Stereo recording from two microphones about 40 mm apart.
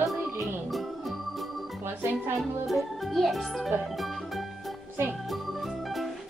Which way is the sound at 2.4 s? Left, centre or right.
Centre.